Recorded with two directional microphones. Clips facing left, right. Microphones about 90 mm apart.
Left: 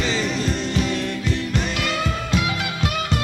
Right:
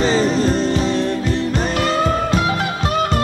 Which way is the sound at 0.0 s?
35° right (ahead or behind).